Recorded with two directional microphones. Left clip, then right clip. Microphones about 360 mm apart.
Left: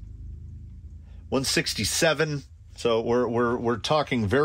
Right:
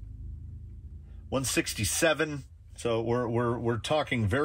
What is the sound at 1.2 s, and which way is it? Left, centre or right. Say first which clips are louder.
Speech: left 4 dB; left.